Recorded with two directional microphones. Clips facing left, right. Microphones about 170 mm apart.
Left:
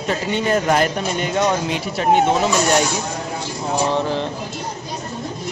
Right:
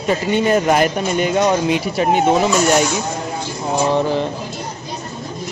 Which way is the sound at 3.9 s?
10° right (ahead or behind).